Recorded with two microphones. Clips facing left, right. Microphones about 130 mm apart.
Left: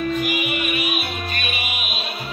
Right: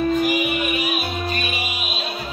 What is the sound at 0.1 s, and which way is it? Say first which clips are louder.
Music: right 3 dB; 35° right (ahead or behind).